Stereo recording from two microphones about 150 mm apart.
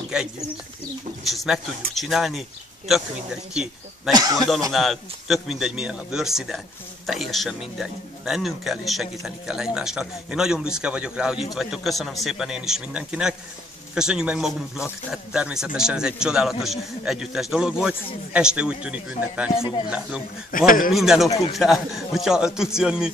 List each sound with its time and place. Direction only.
0.1 s speech: 5° right (ahead or behind)
4.1 s speech: 25° right (ahead or behind)
4.6 s a man's voice: centre (ahead or behind)
20.5 s a man's voice: 65° left (ahead or behind)
20.9 s speech: centre (ahead or behind)